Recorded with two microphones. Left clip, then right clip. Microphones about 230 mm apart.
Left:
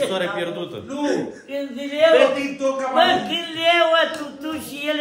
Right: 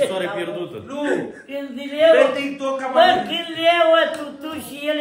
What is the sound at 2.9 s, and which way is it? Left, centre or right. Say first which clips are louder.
A man's voice: right 4 dB; centre.